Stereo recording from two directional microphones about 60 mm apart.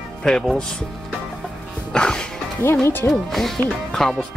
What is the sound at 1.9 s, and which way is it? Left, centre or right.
Music, centre.